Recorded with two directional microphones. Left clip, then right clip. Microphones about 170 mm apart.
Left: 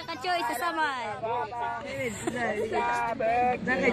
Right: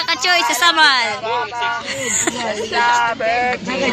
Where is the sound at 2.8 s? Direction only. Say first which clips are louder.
Right 15 dB; 40° left (ahead or behind).